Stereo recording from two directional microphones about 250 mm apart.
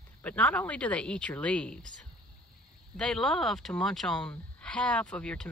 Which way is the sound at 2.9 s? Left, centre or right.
Centre.